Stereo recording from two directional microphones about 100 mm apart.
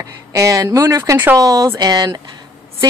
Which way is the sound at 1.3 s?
40° right (ahead or behind).